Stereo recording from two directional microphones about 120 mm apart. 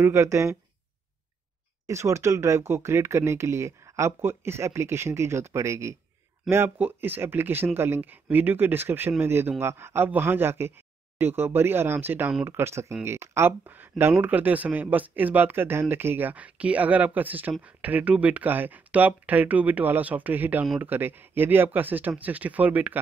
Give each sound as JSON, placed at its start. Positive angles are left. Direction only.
{"t": 0.0, "sound": "speech", "side_deg": -25}
{"t": 1.9, "sound": "speech", "side_deg": -25}